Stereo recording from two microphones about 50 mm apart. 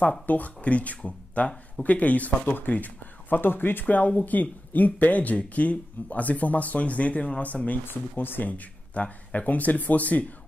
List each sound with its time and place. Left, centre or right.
0.3 s speech: left
3.8 s speech: left
7.8 s speech: left
8.5 s speech: left